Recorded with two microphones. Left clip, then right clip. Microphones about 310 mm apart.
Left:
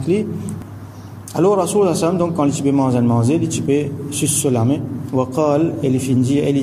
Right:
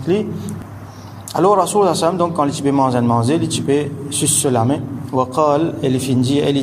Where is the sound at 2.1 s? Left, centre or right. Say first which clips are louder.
Right 1 dB; right.